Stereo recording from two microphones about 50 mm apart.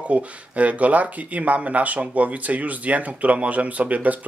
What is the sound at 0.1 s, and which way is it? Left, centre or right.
Speech, right.